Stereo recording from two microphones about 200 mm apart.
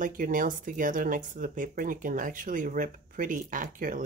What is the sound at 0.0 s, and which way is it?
Speech, 40° right (ahead or behind).